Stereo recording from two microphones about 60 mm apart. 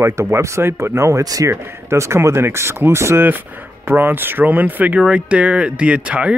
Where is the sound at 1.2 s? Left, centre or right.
Right.